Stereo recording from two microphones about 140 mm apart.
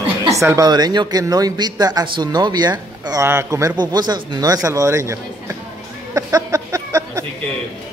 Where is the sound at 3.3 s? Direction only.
20° right (ahead or behind).